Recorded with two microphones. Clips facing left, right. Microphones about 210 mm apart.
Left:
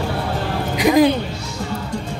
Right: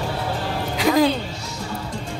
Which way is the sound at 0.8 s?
15° left (ahead or behind).